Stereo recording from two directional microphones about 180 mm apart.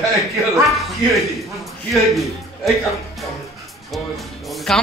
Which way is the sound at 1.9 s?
Centre (ahead or behind).